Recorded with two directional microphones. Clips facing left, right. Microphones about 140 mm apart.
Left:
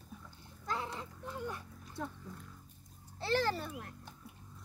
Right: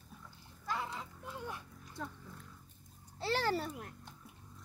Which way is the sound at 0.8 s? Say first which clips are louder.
Even; centre (ahead or behind).